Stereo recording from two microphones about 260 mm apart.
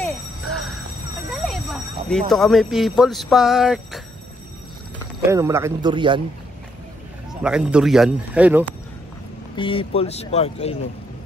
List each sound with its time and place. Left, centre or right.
0.0 s a sound: centre
1.4 s speech: centre
7.4 s speech: centre
9.6 s speech: left